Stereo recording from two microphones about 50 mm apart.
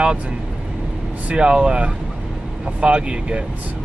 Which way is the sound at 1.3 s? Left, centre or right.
Centre.